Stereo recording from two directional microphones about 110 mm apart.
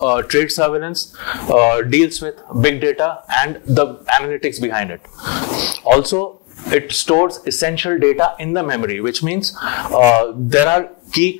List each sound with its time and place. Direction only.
0.0 s a man's voice: 20° left (ahead or behind)